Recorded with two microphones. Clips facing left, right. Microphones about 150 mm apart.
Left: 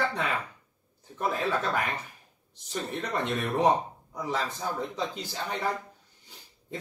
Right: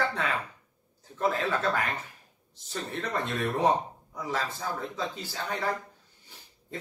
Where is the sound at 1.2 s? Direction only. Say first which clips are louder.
Right 1 dB; 15° left (ahead or behind).